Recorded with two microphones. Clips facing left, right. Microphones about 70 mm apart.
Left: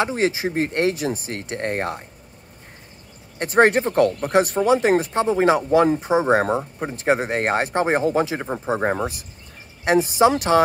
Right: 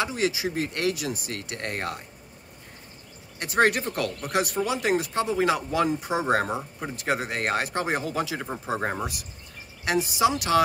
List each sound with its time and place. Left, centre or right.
0.0 s speech: left
3.3 s speech: left